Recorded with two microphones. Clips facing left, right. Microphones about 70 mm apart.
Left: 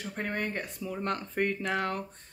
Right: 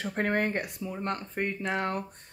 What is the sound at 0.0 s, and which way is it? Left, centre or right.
Speech, right.